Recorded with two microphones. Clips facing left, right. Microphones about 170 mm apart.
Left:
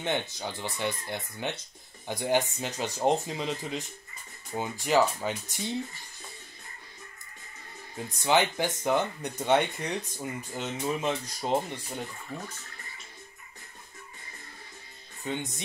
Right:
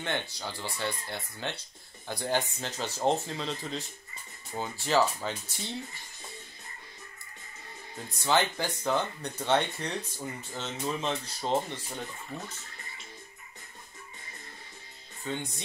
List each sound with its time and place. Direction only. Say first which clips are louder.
0.0 s speech: left 3 dB; 15° left (ahead or behind)
8.2 s speech: left 2 dB; 15° left (ahead or behind)
15.3 s speech: left 2 dB; 20° left (ahead or behind)